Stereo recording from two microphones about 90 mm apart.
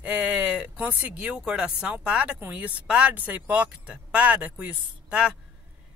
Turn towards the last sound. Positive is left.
turn(degrees=-10)  # may be behind; listen again after turning